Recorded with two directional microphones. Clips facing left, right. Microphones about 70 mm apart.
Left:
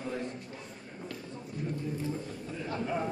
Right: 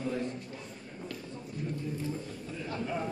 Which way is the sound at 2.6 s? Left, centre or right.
Left.